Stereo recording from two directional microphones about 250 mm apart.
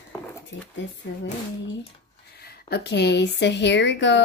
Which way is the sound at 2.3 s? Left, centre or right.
Left.